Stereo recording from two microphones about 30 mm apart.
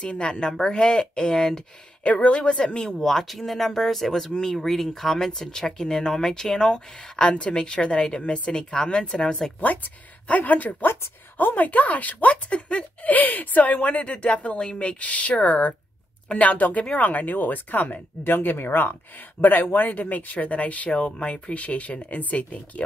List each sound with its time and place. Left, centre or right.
0.0 s a woman's voice: left
2.3 s a woman's voice: left
3.0 s speech: centre
6.7 s a woman's voice: left
10.3 s speech: left
11.3 s speech: left
12.4 s speech: left
13.1 s a woman's voice: left
15.0 s speech: left
16.9 s speech: left
20.0 s speech: left
20.4 s speech: left
21.0 s speech: left